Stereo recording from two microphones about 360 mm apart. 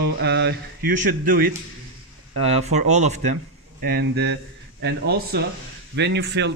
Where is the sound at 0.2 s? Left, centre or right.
Right.